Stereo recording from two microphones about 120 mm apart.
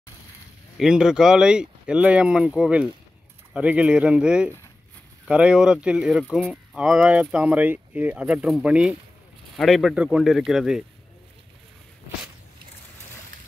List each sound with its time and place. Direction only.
0.7 s speech: 5° right (ahead or behind)
9.6 s speech: centre (ahead or behind)